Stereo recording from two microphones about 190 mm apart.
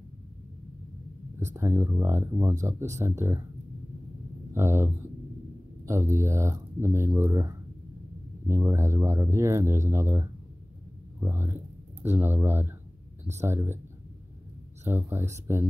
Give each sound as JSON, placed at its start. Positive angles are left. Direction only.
{"t": 1.4, "sound": "speech", "side_deg": -15}
{"t": 4.6, "sound": "speech", "side_deg": -15}
{"t": 14.9, "sound": "speech", "side_deg": -10}